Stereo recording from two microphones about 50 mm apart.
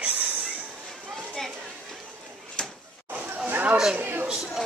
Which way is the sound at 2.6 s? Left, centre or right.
Centre.